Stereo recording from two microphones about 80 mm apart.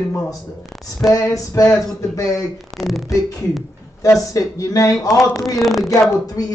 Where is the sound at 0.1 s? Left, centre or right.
Left.